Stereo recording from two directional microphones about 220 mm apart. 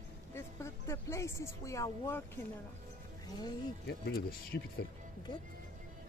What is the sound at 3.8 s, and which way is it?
Speech, 45° left (ahead or behind).